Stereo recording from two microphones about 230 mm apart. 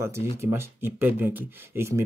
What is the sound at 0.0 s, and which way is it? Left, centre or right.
Speech, centre.